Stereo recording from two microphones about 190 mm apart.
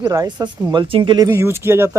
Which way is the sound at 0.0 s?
20° right (ahead or behind).